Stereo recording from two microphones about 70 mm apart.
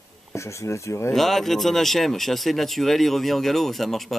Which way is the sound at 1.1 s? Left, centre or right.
Centre.